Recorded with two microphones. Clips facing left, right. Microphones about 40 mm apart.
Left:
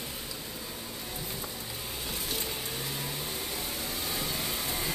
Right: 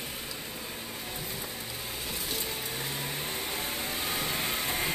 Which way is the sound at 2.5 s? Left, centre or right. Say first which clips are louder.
Right 1 dB; centre.